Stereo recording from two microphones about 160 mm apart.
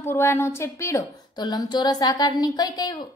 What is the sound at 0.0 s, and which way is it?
A woman's voice, 15° left (ahead or behind).